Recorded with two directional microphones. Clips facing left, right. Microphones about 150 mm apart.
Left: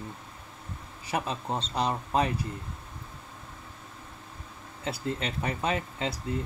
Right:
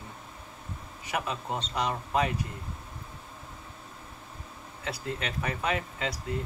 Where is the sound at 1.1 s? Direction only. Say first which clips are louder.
Left 1 dB; 30° left (ahead or behind).